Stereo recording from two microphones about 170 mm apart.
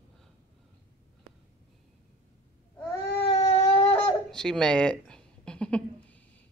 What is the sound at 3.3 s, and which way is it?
Baby cry, 35° left (ahead or behind).